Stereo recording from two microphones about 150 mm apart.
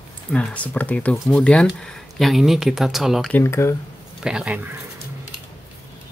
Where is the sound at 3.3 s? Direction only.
15° left (ahead or behind).